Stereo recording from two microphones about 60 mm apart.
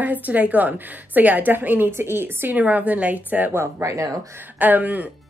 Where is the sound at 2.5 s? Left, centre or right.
Right.